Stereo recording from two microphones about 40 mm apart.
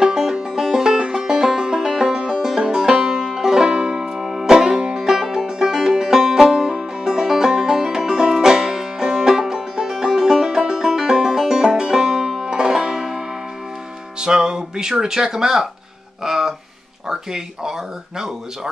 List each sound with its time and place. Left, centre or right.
0.0 s music: centre
14.2 s speech: right
16.3 s a sound: centre
17.1 s speech: centre